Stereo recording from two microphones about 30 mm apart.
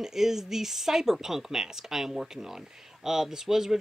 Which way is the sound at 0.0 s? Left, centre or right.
Centre.